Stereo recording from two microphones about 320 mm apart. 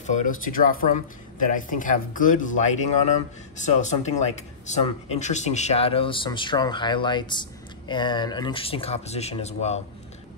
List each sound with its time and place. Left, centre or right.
0.0 s speech: left